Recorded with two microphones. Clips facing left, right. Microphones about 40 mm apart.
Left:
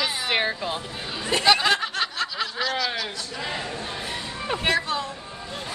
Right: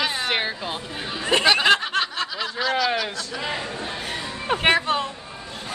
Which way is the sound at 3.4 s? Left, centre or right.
Right.